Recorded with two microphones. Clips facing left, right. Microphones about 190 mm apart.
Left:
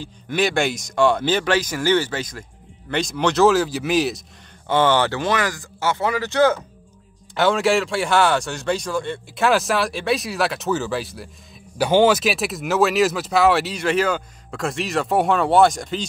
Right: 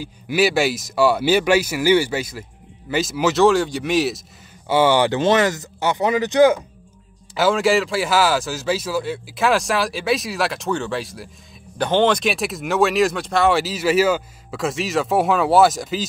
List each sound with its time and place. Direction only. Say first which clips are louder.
0.0 s speech: right 3 dB; 5° right (ahead or behind)
5.2 s speech: right 5 dB; 25° right (ahead or behind)
7.3 s speech: right 1 dB; centre (ahead or behind)